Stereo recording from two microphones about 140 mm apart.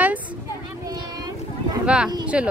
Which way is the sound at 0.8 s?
30° right (ahead or behind).